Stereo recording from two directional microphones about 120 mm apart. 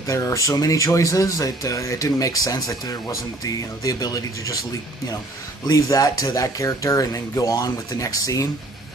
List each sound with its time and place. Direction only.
0.0 s speech: 25° left (ahead or behind)
5.7 s speech: 30° left (ahead or behind)